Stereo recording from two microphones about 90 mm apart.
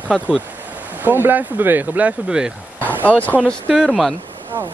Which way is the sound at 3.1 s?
15° left (ahead or behind).